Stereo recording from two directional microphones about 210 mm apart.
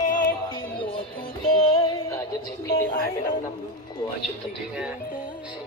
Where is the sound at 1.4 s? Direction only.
25° left (ahead or behind).